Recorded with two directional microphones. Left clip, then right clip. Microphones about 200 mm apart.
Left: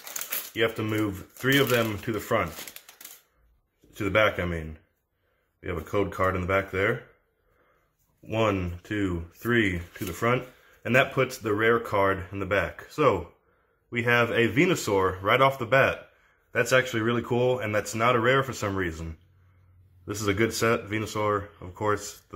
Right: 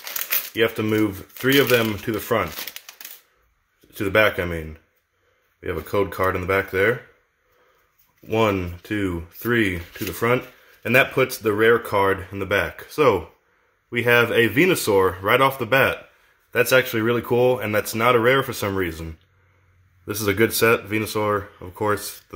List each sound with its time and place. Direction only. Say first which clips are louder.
0.0 s shuffling cards: right 8 dB; 5° right (ahead or behind)
0.6 s speech: right 6 dB; 50° right (ahead or behind)
3.9 s speech: right 5 dB; 50° right (ahead or behind)
8.3 s speech: right 5 dB; 50° right (ahead or behind)
20.1 s speech: right 6 dB; 45° right (ahead or behind)